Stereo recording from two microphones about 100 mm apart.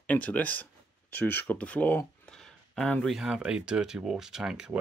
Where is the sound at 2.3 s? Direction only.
5° left (ahead or behind).